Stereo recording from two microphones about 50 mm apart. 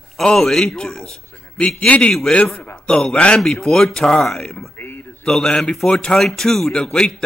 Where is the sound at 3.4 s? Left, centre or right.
Centre.